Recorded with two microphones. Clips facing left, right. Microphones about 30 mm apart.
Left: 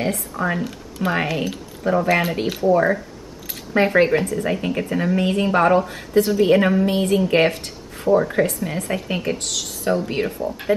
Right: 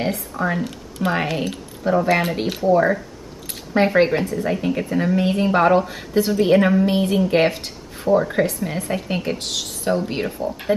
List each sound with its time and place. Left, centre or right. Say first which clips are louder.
0.3 s speech: even; centre
9.4 s speech: right 1 dB; centre
9.8 s speech: left 1 dB; centre